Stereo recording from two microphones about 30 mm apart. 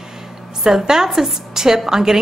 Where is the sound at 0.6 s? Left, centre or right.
Centre.